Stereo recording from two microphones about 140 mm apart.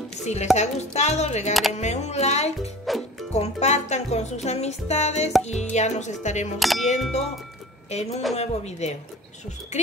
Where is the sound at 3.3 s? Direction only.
50° left (ahead or behind).